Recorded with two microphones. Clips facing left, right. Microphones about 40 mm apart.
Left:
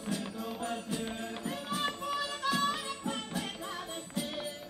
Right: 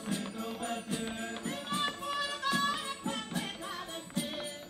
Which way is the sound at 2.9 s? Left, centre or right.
Right.